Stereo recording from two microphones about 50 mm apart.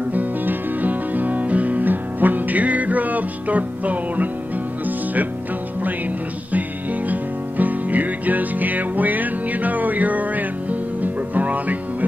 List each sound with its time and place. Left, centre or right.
0.1 s music: right
6.5 s music: right